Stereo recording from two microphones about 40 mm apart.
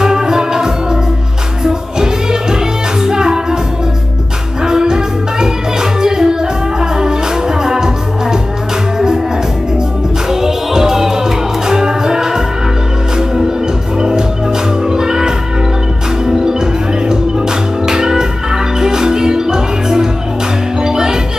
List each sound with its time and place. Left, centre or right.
0.0 s music: centre
4.6 s music: centre
10.3 s music: centre
13.9 s music: centre